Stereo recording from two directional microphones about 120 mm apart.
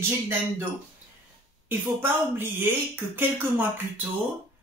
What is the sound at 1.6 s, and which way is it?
Speech, 15° right (ahead or behind).